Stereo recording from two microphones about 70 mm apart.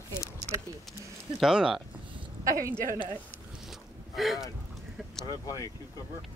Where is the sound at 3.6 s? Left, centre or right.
Centre.